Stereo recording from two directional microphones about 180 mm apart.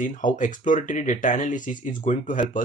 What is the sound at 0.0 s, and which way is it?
Speech, 45° left (ahead or behind).